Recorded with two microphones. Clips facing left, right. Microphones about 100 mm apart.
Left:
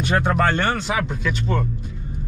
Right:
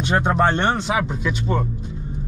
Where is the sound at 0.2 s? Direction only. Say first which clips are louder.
Right 1 dB; 25° right (ahead or behind).